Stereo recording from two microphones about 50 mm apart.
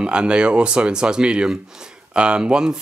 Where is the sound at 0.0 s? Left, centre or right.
Right.